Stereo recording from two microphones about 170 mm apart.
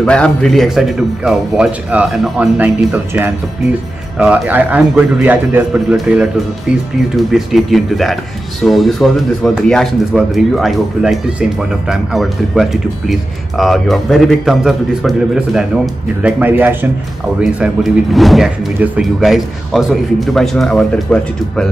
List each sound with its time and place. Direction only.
0.0 s a man's voice: 5° left (ahead or behind)